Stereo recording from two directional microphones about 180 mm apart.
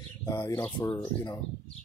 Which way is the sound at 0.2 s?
20° left (ahead or behind).